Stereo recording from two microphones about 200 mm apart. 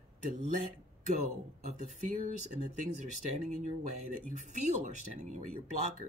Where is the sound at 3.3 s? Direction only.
35° right (ahead or behind).